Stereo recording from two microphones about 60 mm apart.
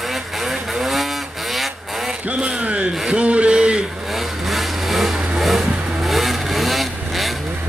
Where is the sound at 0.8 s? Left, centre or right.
Centre.